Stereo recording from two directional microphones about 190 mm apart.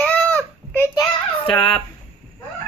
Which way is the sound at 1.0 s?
30° left (ahead or behind).